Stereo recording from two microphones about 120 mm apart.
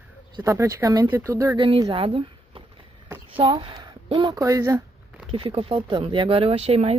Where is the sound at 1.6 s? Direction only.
45° right (ahead or behind).